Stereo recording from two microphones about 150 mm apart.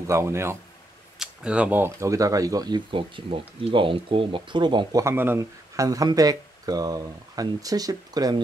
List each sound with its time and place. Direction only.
0.0 s speech: 20° right (ahead or behind)
1.2 s speech: 5° right (ahead or behind); by 5.0 s 30° right (ahead or behind)
5.0 s speech: 15° right (ahead or behind)